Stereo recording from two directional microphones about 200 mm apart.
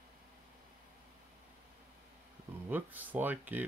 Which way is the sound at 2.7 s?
10° right (ahead or behind).